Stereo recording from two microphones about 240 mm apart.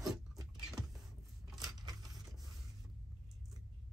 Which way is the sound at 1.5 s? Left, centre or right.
Centre.